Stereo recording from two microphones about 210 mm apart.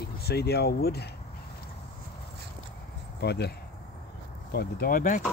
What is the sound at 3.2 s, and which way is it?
Speech, 50° left (ahead or behind).